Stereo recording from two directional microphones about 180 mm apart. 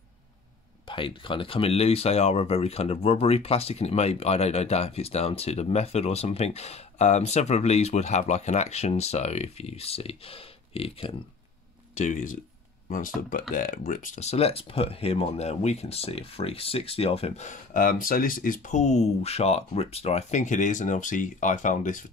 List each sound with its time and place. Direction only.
0.8 s speech: 30° left (ahead or behind)
11.9 s speech: 45° left (ahead or behind)